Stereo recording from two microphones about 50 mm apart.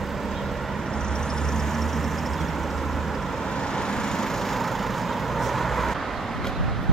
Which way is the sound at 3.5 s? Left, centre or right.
Centre.